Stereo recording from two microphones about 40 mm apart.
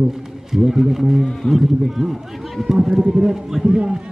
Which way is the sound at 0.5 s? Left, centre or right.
Centre.